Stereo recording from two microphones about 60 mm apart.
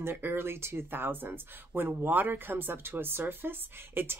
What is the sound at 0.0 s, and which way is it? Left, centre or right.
Speech, right.